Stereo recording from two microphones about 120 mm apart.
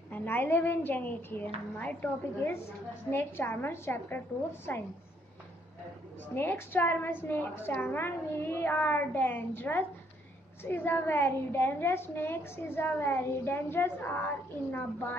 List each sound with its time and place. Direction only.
0.1 s a woman's voice: 15° left (ahead or behind)
6.3 s a woman's voice: 15° left (ahead or behind)